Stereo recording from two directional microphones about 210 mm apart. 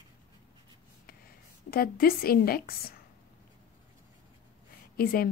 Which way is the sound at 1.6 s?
45° left (ahead or behind).